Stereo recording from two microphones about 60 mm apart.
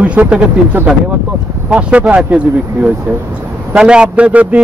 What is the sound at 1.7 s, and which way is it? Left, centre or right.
A man's voice, centre.